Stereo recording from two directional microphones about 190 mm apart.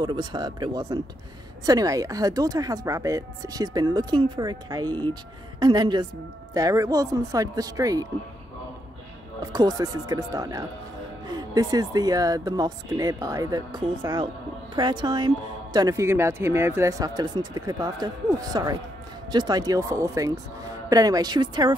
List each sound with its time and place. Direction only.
0.0 s speech: 25° right (ahead or behind)
9.5 s speech: 20° right (ahead or behind)